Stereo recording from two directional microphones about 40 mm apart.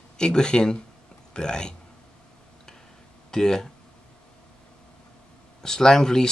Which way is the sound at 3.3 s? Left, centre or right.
Centre.